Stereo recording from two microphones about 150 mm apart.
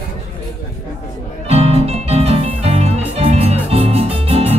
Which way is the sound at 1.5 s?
40° right (ahead or behind).